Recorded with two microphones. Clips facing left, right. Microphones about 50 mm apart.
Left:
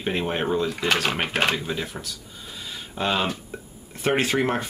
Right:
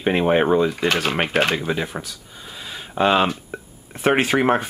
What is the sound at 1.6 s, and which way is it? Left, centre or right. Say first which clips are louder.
Speech: right 5 dB; right.